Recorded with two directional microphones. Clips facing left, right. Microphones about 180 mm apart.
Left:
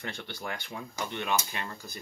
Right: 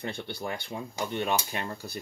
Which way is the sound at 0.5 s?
25° right (ahead or behind).